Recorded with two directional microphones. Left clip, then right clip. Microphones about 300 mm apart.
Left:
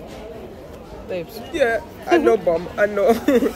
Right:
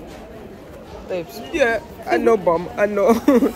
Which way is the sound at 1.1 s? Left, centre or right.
Centre.